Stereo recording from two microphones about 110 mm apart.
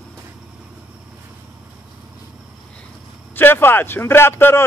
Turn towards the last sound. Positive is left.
turn(degrees=20)  # may be behind; listen again after turning